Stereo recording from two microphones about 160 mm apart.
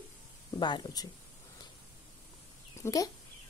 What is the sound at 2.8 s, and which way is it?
Speech, 20° left (ahead or behind).